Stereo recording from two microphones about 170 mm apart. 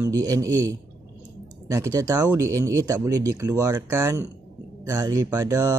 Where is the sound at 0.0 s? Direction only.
20° right (ahead or behind).